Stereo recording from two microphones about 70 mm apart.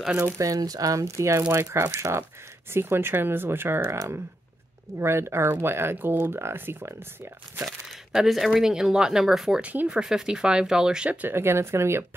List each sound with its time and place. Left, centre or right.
0.4 s speech: right
5.0 s speech: right
7.6 s speech: centre
9.6 s speech: centre
11.1 s speech: right
11.3 s speech: right